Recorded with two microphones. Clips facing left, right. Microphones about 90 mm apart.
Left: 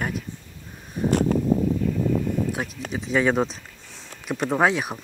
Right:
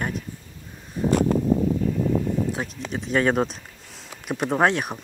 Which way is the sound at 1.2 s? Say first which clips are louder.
Even; 15° right (ahead or behind).